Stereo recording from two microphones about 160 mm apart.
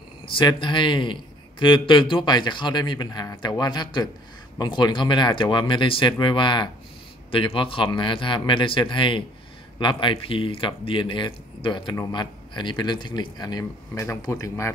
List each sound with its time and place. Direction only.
0.3 s speech: 30° left (ahead or behind)